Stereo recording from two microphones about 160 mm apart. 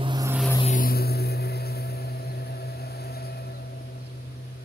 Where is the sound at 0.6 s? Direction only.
60° left (ahead or behind); by 3.6 s 80° left.